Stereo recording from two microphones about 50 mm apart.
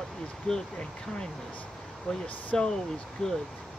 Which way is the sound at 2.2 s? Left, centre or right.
Left.